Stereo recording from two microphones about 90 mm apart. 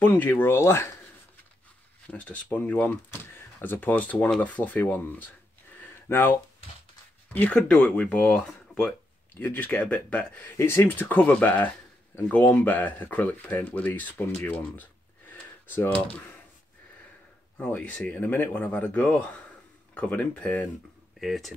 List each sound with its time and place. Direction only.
0.0 s speech: 20° left (ahead or behind)
2.0 s speech: 15° left (ahead or behind)
7.3 s speech: 15° left (ahead or behind)
8.5 s a sound: 10° left (ahead or behind)
9.4 s speech: 20° left (ahead or behind)
10.6 s speech: 30° left (ahead or behind)
17.6 s speech: 20° left (ahead or behind)
21.2 s speech: centre (ahead or behind)